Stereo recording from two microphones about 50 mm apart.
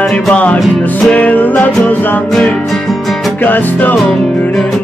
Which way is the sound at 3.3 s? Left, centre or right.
Left.